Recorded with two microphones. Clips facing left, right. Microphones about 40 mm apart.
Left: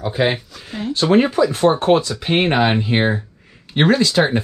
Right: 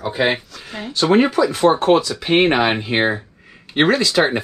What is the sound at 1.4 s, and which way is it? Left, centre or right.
Speech, right.